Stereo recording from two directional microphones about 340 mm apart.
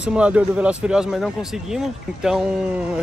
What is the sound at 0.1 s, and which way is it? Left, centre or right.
Speech, centre.